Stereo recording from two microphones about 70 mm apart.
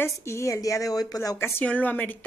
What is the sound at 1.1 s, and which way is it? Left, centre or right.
Speech, left.